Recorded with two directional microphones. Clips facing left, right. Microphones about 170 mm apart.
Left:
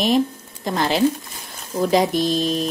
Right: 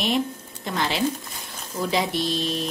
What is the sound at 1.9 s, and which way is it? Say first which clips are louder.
Stir: left 6 dB; 45° left (ahead or behind).